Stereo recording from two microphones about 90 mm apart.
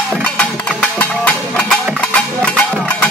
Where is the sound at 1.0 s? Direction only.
15° left (ahead or behind).